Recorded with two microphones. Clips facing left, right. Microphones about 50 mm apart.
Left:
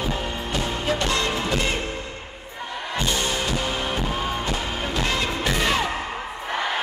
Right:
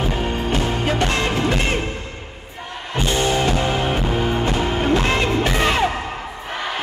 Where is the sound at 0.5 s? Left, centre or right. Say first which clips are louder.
Right 3 dB; right.